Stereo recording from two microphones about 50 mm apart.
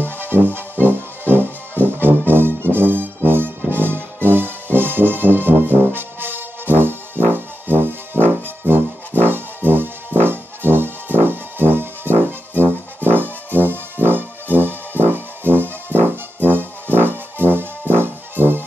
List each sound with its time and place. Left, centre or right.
0.2 s music: right